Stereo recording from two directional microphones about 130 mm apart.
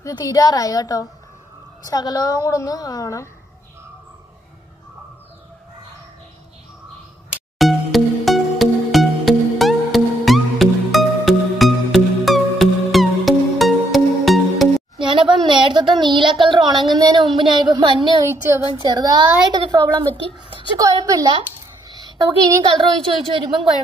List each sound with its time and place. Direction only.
0.0 s a woman's voice: 30° left (ahead or behind)
7.5 s music: centre (ahead or behind)
15.0 s a sound: 40° right (ahead or behind)
15.3 s a woman's voice: 35° right (ahead or behind)
18.2 s a woman's voice: 20° right (ahead or behind)
18.9 s a woman's voice: 30° right (ahead or behind)
20.7 s a woman's voice: 25° right (ahead or behind)